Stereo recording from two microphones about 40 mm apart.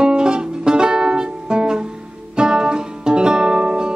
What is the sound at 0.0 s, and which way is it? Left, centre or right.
Music, right.